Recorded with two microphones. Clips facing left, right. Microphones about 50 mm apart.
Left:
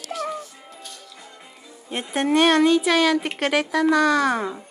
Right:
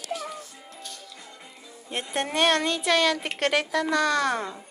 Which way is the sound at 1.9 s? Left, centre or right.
Centre.